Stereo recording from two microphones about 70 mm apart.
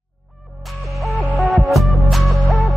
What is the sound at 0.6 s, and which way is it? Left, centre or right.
Music, centre.